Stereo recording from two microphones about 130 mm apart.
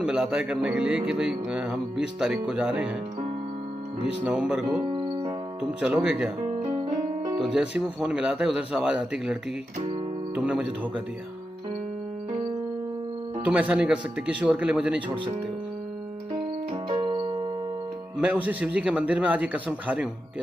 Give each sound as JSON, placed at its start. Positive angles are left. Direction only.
{"t": 0.0, "sound": "speech", "side_deg": -5}
{"t": 4.0, "sound": "speech", "side_deg": -10}
{"t": 4.9, "sound": "electric piano", "side_deg": -35}
{"t": 5.6, "sound": "speech", "side_deg": -5}
{"t": 7.3, "sound": "speech", "side_deg": -5}
{"t": 13.5, "sound": "speech", "side_deg": -10}
{"t": 16.9, "sound": "keyboard", "side_deg": -40}
{"t": 18.2, "sound": "speech", "side_deg": -10}